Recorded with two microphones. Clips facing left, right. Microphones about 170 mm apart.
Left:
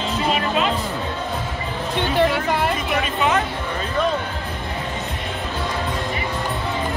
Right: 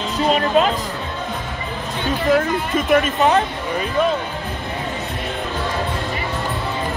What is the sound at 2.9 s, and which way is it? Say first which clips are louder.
Speech: right 9 dB; 45° right (ahead or behind).